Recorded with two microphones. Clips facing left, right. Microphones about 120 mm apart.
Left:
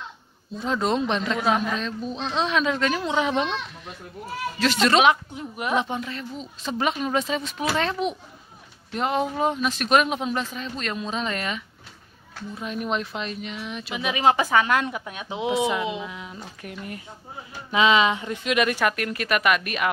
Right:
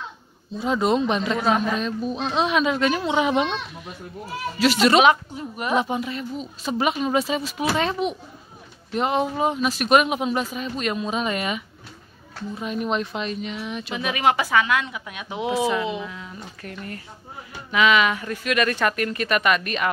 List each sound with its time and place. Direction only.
0.6 s speech: 5° right (ahead or behind)
4.6 s speech: 10° right (ahead or behind)
14.1 s speech: 25° left (ahead or behind)
15.3 s speech: 20° left (ahead or behind); by 19.9 s 5° left (ahead or behind)